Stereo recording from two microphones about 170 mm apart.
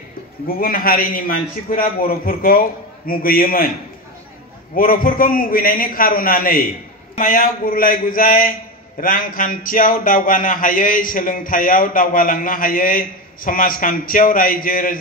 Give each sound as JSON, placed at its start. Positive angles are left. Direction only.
{"t": 0.5, "sound": "speech", "side_deg": 60}
{"t": 4.7, "sound": "speech", "side_deg": 55}